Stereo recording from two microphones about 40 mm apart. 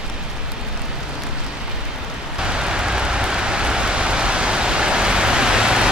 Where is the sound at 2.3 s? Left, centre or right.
Centre.